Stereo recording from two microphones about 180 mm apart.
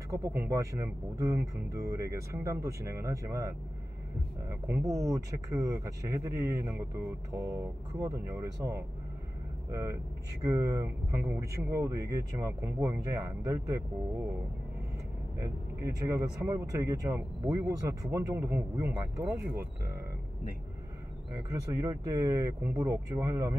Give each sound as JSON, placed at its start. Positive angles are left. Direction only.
{"t": 0.1, "sound": "speech", "side_deg": -15}
{"t": 15.4, "sound": "speech", "side_deg": -20}
{"t": 21.4, "sound": "speech", "side_deg": -15}